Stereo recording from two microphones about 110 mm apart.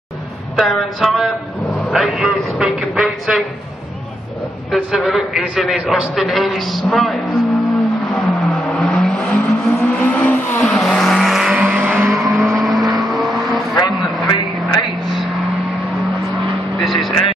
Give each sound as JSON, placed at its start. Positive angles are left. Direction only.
{"t": 0.6, "sound": "a man's voice", "side_deg": 0}
{"t": 4.6, "sound": "a sound", "side_deg": 0}
{"t": 9.1, "sound": "vehicle", "side_deg": 10}
{"t": 10.6, "sound": "vehicle", "side_deg": 5}
{"t": 12.1, "sound": "vehicle", "side_deg": 0}
{"t": 14.3, "sound": "vehicle", "side_deg": 45}
{"t": 16.7, "sound": "vehicle", "side_deg": 0}